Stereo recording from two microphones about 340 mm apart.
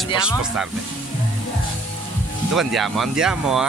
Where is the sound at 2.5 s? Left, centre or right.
Centre.